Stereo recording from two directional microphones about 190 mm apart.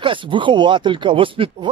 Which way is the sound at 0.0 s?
25° right (ahead or behind).